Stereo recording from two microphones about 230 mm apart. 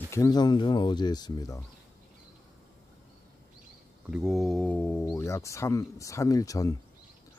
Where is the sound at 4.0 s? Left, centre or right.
Centre.